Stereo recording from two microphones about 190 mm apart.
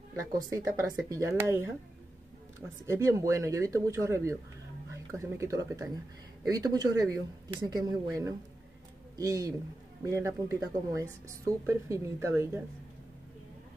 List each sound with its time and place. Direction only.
0.1 s speech: 15° right (ahead or behind)
2.9 s speech: 15° right (ahead or behind)